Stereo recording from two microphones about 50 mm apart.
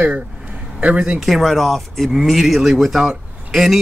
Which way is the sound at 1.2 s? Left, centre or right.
Centre.